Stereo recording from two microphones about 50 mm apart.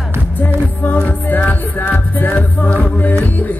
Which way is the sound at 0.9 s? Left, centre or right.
Left.